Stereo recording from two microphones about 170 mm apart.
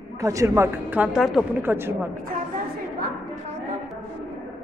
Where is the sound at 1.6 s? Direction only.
15° right (ahead or behind).